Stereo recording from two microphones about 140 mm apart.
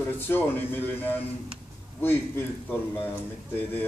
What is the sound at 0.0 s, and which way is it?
A man's voice, 15° left (ahead or behind).